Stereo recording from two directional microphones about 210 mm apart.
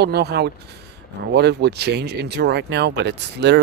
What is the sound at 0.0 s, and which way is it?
Speech, 50° right (ahead or behind).